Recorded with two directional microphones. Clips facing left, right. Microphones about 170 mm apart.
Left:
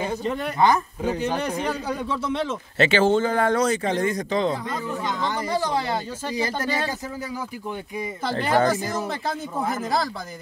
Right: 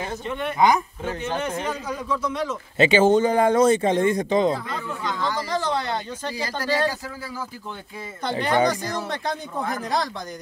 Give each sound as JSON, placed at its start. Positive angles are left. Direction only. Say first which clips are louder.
{"t": 0.2, "sound": "speech", "louder": "left 2 dB", "side_deg": 35}
{"t": 1.7, "sound": "speech", "louder": "left 1 dB", "side_deg": 30}
{"t": 2.8, "sound": "speech", "louder": "right 2 dB", "side_deg": -15}
{"t": 5.0, "sound": "speech", "louder": "right 2 dB", "side_deg": 20}
{"t": 5.5, "sound": "a sound", "louder": "left 3 dB", "side_deg": 10}
{"t": 6.3, "sound": "speech", "louder": "even", "side_deg": 20}
{"t": 8.3, "sound": "speech", "louder": "even", "side_deg": 5}